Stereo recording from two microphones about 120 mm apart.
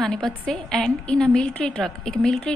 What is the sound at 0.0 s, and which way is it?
A woman's voice, 5° left (ahead or behind).